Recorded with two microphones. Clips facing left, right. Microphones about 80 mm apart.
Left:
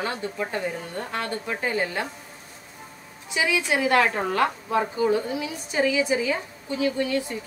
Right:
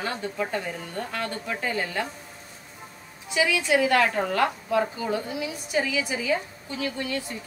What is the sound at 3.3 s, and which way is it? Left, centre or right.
A woman's voice, left.